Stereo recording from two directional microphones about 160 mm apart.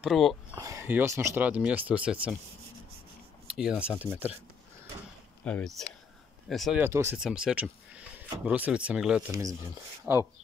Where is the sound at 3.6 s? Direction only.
5° right (ahead or behind).